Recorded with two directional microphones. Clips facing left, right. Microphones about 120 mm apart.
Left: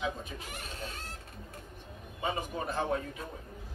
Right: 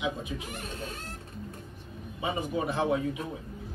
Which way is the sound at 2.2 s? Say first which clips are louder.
Right 4 dB; 10° right (ahead or behind).